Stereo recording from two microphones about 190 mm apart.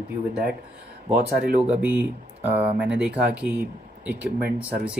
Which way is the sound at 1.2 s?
55° right (ahead or behind).